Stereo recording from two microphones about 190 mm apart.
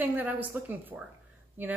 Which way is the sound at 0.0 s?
10° right (ahead or behind).